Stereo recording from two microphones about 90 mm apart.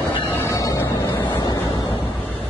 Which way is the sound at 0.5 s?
35° left (ahead or behind).